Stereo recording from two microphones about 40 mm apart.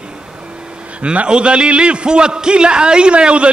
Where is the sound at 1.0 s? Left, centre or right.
Right.